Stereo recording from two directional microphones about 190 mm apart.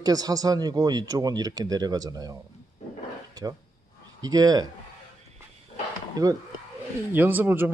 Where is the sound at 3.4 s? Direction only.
20° right (ahead or behind).